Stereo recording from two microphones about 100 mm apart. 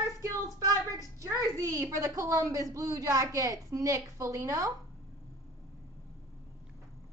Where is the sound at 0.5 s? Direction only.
35° right (ahead or behind).